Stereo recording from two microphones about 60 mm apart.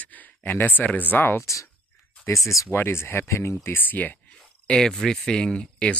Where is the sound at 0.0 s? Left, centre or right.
Left.